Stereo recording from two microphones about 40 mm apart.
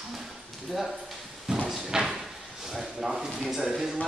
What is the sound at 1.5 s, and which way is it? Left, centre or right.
Drawer open or close, right.